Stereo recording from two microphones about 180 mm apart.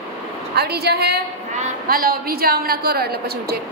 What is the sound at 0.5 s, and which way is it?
A woman's voice, 60° right (ahead or behind).